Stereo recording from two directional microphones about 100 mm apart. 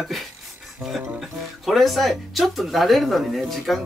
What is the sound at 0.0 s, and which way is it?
Speech, centre (ahead or behind).